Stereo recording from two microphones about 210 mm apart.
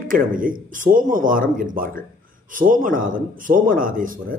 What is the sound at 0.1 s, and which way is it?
A man's voice, 40° right (ahead or behind).